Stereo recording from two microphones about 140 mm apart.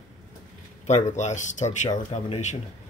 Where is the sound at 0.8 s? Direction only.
55° left (ahead or behind).